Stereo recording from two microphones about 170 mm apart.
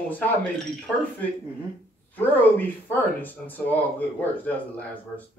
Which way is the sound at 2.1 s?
10° left (ahead or behind).